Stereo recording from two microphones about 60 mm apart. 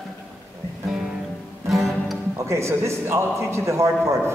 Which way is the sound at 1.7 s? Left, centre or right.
Centre.